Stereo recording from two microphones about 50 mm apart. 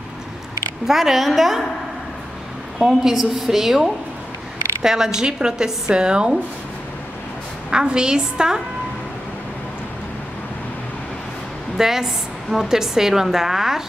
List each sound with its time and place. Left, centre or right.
0.8 s a woman's voice: centre
2.8 s a woman's voice: centre
7.7 s a woman's voice: centre
11.7 s a woman's voice: centre